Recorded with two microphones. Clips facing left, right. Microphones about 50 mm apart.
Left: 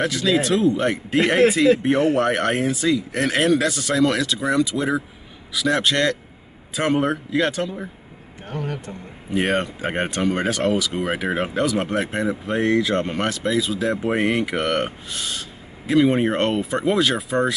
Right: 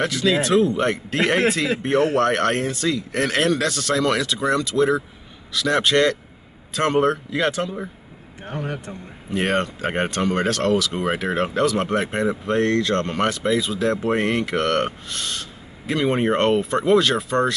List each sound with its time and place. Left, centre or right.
0.0 s speech: centre
8.5 s speech: centre
9.3 s speech: centre